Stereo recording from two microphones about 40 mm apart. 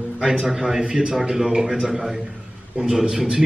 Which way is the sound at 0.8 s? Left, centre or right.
Right.